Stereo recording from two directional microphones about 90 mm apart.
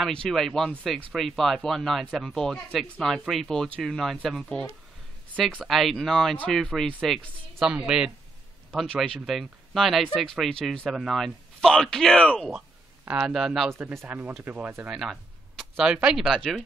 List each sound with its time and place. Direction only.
0.0 s speech: 5° left (ahead or behind)
5.7 s speech: centre (ahead or behind)
9.0 s speech: 5° left (ahead or behind)
13.1 s speech: 5° right (ahead or behind)
13.7 s speech: 25° right (ahead or behind)
14.9 s a sound: 5° right (ahead or behind)
15.8 s speech: 5° right (ahead or behind)